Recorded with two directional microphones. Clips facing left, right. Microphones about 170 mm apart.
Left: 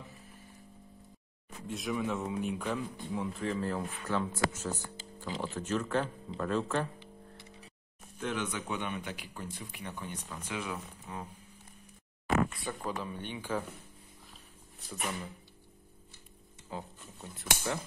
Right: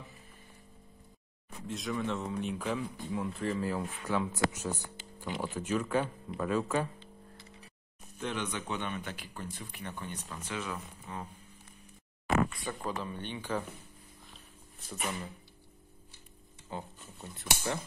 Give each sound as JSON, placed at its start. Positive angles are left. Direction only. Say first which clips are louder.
{"t": 1.7, "sound": "a man's voice", "louder": "left 1 dB", "side_deg": 5}
{"t": 2.6, "sound": "speech", "louder": "right 1 dB", "side_deg": -5}
{"t": 4.5, "sound": "speech", "louder": "even", "side_deg": -15}
{"t": 8.2, "sound": "a man's voice", "louder": "left 1 dB", "side_deg": 10}
{"t": 12.6, "sound": "a man's voice", "louder": "even", "side_deg": 10}
{"t": 14.9, "sound": "speech", "louder": "even", "side_deg": 0}
{"t": 16.7, "sound": "speech", "louder": "even", "side_deg": 0}